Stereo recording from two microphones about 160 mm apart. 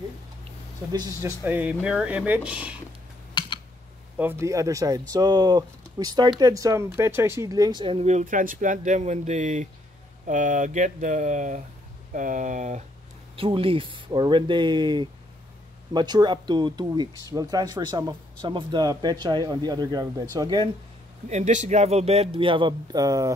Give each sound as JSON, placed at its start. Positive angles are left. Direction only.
{"t": 0.9, "sound": "speech", "side_deg": -25}
{"t": 1.4, "sound": "speech", "side_deg": -10}
{"t": 4.2, "sound": "speech", "side_deg": -15}
{"t": 13.4, "sound": "speech", "side_deg": -35}
{"t": 21.3, "sound": "speech", "side_deg": -50}